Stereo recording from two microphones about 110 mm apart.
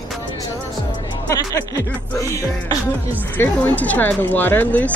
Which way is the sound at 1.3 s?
30° left (ahead or behind).